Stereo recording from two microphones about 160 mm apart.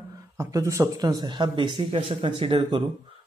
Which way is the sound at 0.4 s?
20° right (ahead or behind).